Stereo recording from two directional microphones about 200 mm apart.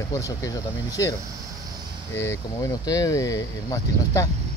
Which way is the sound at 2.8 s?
15° left (ahead or behind).